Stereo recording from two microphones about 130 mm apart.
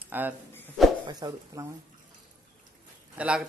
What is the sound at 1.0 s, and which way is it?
Speech, 30° right (ahead or behind).